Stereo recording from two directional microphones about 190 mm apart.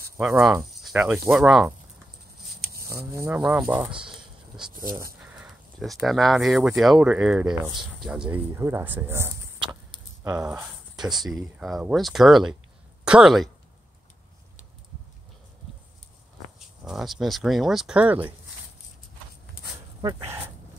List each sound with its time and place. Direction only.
0.3 s speech: 15° right (ahead or behind)
0.8 s speech: 5° right (ahead or behind)
3.2 s speech: 10° right (ahead or behind)
4.1 s a sound: 5° right (ahead or behind)
5.4 s speech: centre (ahead or behind)
10.4 s speech: 5° right (ahead or behind)
16.5 s speech: centre (ahead or behind)
20.0 s speech: 20° right (ahead or behind)